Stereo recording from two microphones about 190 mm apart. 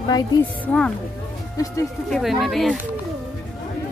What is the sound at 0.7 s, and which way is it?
Speech, 5° left (ahead or behind).